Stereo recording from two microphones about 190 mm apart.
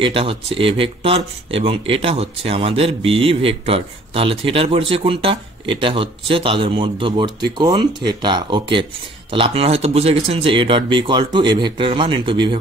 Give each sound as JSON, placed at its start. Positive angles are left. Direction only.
{"t": 0.0, "sound": "speech", "side_deg": -30}